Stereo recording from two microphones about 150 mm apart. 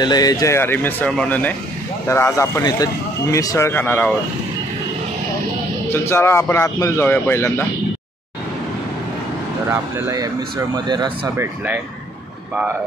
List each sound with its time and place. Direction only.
0.0 s speech: 25° left (ahead or behind)
5.9 s speech: 15° left (ahead or behind)
9.7 s speech: 15° right (ahead or behind)
11.3 s speech: 10° right (ahead or behind)